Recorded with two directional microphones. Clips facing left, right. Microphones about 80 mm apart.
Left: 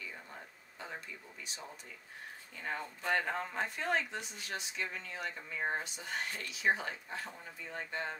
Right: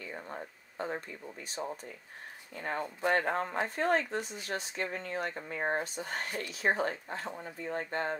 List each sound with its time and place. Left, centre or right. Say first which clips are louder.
0.0 s speech: right 7 dB; right